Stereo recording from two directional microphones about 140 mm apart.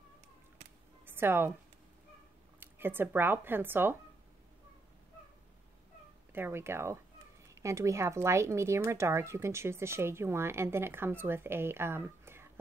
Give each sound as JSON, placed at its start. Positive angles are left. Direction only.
{"t": 1.0, "sound": "a sound", "side_deg": -15}
{"t": 2.6, "sound": "speech", "side_deg": -15}
{"t": 6.3, "sound": "speech", "side_deg": -15}